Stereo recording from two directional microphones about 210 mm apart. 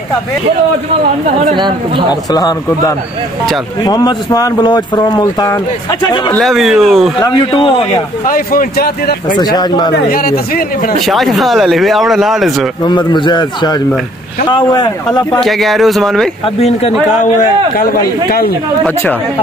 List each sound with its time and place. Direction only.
1.5 s speech: 25° right (ahead or behind)
2.3 s speech: 20° left (ahead or behind)
6.3 s speech: centre (ahead or behind)
7.2 s speech: 20° left (ahead or behind)
8.3 s speech: 45° left (ahead or behind)
9.3 s speech: 20° left (ahead or behind)
10.1 s speech: 45° left (ahead or behind)
11.1 s speech: centre (ahead or behind)
12.8 s speech: 20° left (ahead or behind)
15.4 s speech: centre (ahead or behind)